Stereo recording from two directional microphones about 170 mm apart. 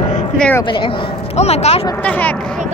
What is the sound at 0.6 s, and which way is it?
Speech, 30° left (ahead or behind).